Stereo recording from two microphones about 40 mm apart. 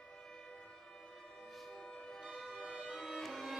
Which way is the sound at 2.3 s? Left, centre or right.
Centre.